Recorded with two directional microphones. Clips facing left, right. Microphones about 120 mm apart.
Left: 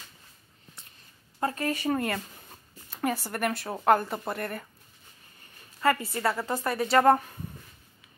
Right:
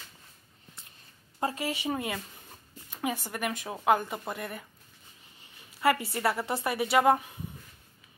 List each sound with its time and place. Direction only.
1.4 s speech: 15° right (ahead or behind)
1.8 s speech: 5° right (ahead or behind)
5.8 s a woman's voice: 15° right (ahead or behind)